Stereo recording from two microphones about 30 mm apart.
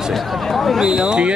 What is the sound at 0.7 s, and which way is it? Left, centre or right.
Speech, centre.